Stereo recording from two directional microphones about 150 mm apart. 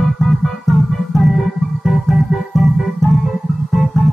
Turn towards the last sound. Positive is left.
turn(degrees=0)  # may be behind; listen again after turning